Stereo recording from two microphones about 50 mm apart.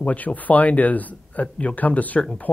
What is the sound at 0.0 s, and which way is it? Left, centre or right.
Speech, left.